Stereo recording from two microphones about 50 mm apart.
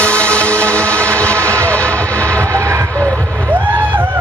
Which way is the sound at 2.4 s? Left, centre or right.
Right.